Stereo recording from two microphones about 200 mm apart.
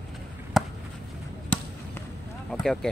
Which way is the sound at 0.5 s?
Centre (ahead or behind).